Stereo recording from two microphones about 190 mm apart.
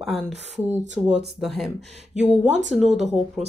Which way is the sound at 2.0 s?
35° right (ahead or behind).